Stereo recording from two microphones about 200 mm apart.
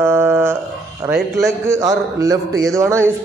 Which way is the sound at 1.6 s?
15° right (ahead or behind).